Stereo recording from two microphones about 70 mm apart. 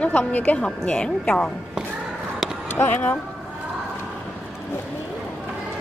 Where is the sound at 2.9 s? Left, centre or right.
Left.